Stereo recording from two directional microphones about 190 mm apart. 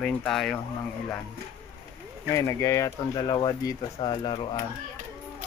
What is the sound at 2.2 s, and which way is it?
Speech, 15° left (ahead or behind).